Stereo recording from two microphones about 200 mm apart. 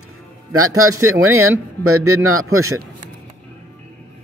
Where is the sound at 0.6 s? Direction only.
90° right.